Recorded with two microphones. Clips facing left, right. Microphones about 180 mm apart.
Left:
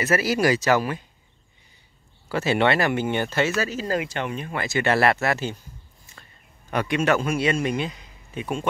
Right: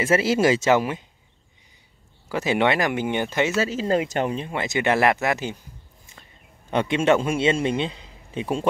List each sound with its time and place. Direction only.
0.0 s a man's voice: 25° right (ahead or behind)
2.2 s speech: 15° right (ahead or behind); by 4.5 s 35° right (ahead or behind)
4.5 s speech: 20° right (ahead or behind)
6.7 s a man's voice: 25° right (ahead or behind)